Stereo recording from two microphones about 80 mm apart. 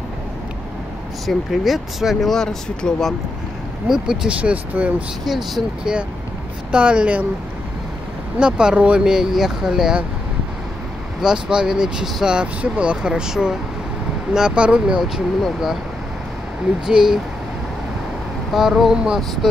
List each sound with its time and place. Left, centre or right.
1.2 s speech: centre
3.9 s speech: centre
4.4 s speech: centre
5.2 s speech: centre
8.4 s speech: centre
11.1 s speech: centre
16.8 s speech: centre
18.5 s speech: centre